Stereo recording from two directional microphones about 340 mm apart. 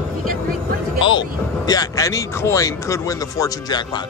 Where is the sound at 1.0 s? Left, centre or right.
Centre.